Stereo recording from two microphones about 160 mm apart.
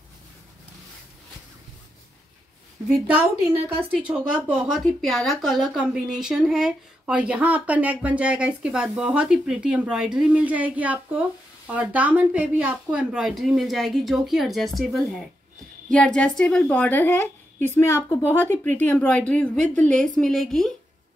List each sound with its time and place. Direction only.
2.9 s a woman's voice: 10° right (ahead or behind)